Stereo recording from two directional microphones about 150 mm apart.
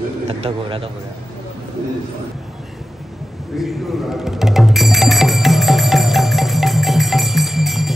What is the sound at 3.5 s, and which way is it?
Music, centre (ahead or behind).